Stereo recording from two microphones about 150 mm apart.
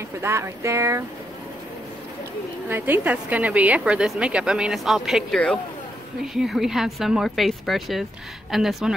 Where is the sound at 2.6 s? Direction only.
15° right (ahead or behind).